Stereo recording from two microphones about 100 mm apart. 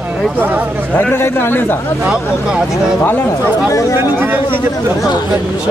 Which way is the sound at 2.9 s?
20° left (ahead or behind).